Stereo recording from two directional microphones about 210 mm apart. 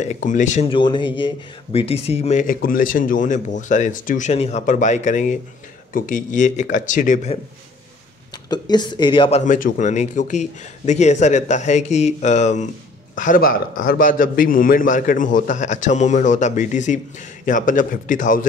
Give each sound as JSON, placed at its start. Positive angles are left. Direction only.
{"t": 0.0, "sound": "speech", "side_deg": 35}
{"t": 8.5, "sound": "speech", "side_deg": 20}
{"t": 9.4, "sound": "speech", "side_deg": 40}